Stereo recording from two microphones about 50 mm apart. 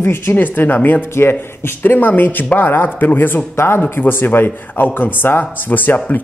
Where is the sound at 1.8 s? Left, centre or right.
Left.